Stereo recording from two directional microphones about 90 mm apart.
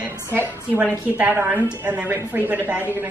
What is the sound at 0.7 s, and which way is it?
A woman's voice, 20° right (ahead or behind).